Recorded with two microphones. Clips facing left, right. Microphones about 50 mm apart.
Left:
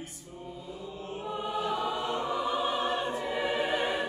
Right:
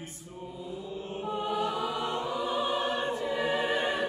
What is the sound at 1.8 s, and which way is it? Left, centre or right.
Choir, left.